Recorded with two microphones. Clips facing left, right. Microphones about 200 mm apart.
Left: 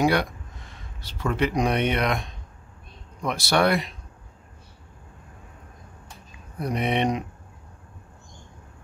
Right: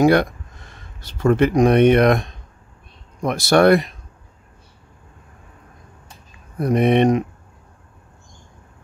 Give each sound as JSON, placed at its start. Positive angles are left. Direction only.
{"t": 0.0, "sound": "speech", "side_deg": -50}
{"t": 6.6, "sound": "speech", "side_deg": -50}